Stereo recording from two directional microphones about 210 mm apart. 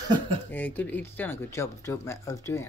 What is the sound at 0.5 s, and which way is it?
Speech, 10° left (ahead or behind).